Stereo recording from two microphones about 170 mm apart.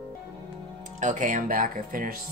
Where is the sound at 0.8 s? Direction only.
45° right (ahead or behind).